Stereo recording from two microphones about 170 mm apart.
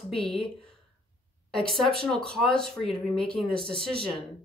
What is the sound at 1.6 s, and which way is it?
Speech, centre (ahead or behind).